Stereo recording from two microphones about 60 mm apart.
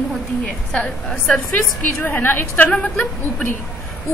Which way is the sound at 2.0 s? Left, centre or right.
Left.